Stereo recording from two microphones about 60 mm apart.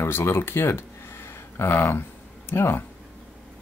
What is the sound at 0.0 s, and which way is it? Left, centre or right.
Speech, left.